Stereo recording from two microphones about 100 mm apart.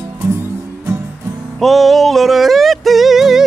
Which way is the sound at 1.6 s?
Centre (ahead or behind).